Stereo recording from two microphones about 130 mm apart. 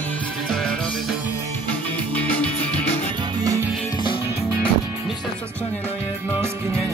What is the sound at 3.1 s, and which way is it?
Music, 30° right (ahead or behind).